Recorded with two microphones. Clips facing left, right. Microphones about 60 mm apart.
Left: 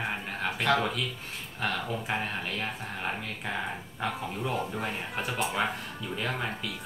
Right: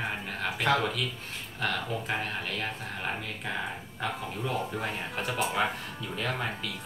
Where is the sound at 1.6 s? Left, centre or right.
Centre.